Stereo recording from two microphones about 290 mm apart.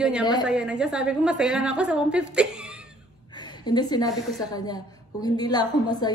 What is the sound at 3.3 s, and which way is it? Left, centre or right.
A woman's voice, centre.